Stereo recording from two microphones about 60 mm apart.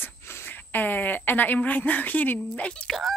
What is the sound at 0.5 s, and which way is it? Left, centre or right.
A woman's voice, left.